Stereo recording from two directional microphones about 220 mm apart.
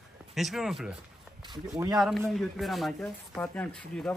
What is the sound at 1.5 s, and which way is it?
Speech, 15° right (ahead or behind).